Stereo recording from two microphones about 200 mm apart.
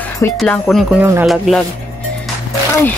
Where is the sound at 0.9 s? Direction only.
10° right (ahead or behind).